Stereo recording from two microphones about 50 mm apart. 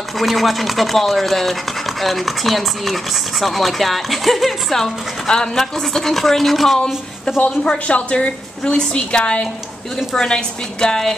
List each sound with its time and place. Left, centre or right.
0.2 s speech: centre
7.4 s a woman's voice: left